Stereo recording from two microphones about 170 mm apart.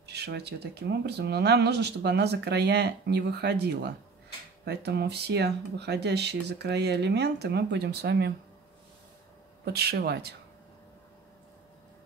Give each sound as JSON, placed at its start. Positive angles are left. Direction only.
{"t": 0.0, "sound": "speech", "side_deg": -75}
{"t": 9.7, "sound": "speech", "side_deg": -70}